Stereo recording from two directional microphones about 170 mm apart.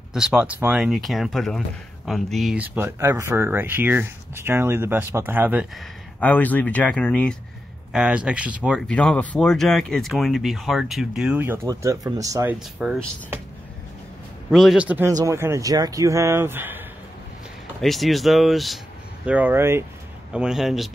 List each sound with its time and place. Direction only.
0.1 s speech: 5° right (ahead or behind)
6.1 s speech: 10° left (ahead or behind)
7.9 s speech: 5° right (ahead or behind)
8.8 s speech: 5° left (ahead or behind); by 12.5 s 20° right (ahead or behind)
12.5 s speech: 5° right (ahead or behind)
14.5 s speech: centre (ahead or behind)
17.7 s speech: centre (ahead or behind)
20.3 s speech: 5° right (ahead or behind)